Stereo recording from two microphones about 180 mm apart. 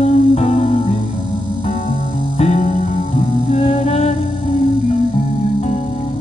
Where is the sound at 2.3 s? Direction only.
40° left (ahead or behind).